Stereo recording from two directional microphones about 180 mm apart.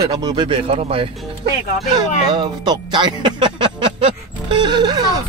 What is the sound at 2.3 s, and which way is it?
Speech, 25° right (ahead or behind).